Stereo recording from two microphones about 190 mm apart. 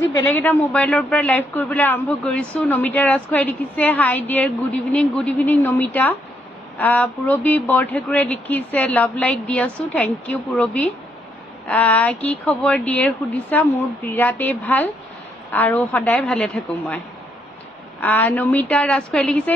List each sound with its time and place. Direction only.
0.2 s a man's voice: 10° left (ahead or behind)
18.0 s a man's voice: 10° left (ahead or behind)